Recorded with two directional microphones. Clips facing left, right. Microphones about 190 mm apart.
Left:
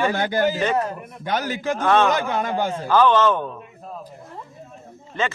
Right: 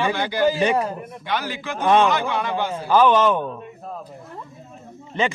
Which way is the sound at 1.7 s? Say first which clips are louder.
Right 2 dB; 15° right (ahead or behind).